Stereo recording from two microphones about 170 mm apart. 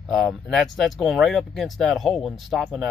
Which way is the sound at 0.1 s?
Centre (ahead or behind).